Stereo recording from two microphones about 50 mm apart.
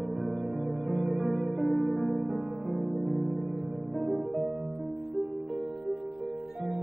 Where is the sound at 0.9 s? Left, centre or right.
Centre.